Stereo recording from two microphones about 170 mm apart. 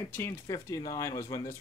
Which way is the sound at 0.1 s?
20° left (ahead or behind).